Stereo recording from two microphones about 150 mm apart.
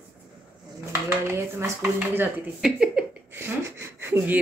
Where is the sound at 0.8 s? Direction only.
15° right (ahead or behind).